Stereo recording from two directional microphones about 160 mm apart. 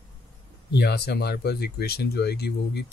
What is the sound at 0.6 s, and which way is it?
Speech, 90° left.